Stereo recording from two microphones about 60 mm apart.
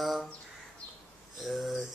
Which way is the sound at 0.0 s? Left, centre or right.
Centre.